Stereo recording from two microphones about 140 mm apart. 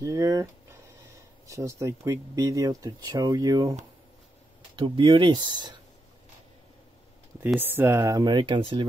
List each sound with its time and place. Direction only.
0.0 s speech: 25° right (ahead or behind)
4.7 s speech: 40° right (ahead or behind)
7.3 s speech: 15° right (ahead or behind); by 8.8 s 35° right (ahead or behind)